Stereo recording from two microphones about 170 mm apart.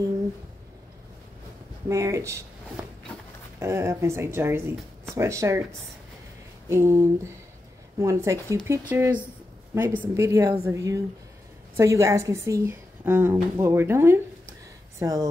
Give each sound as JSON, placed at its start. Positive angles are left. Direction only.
{"t": 1.9, "sound": "a woman's voice", "side_deg": -20}
{"t": 3.5, "sound": "a woman's voice", "side_deg": -15}